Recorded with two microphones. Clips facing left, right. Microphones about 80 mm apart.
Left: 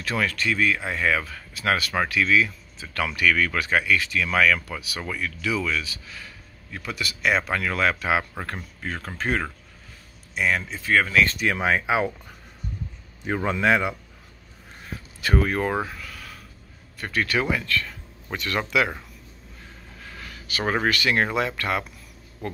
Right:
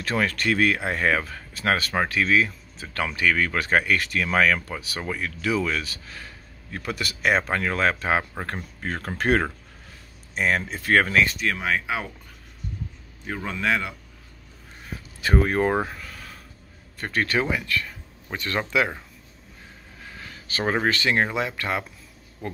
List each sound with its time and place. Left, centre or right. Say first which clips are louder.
0.0 s speech: right 1 dB; right
4.3 s speech: even; right
8.2 s speech: right 1 dB; right
8.8 s speech: right 2 dB; right
10.3 s speech: right 1 dB; right
10.8 s speech: right 2 dB; right
11.5 s speech: left 4 dB; centre
13.5 s speech: left 4 dB; centre
15.2 s speech: right 2 dB; right
17.5 s speech: left 1 dB; centre
20.0 s a sound: even; right
20.6 s speech: even; centre
20.9 s speech: even; right